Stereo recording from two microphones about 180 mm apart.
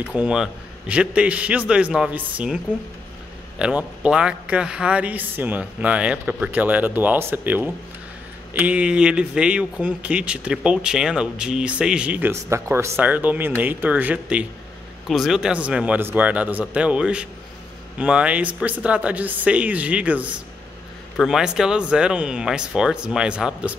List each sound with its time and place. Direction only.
0.1 s speech: 5° right (ahead or behind)